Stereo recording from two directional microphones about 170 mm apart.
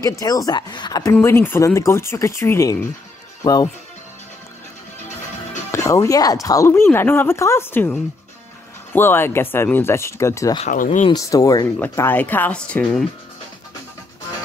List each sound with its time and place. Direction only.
0.0 s speech: 20° left (ahead or behind)
1.1 s speech: 10° left (ahead or behind)
5.7 s speech: 20° left (ahead or behind)
10.7 s speech: 45° left (ahead or behind)
11.1 s speech: 20° left (ahead or behind); by 13.0 s 5° left (ahead or behind)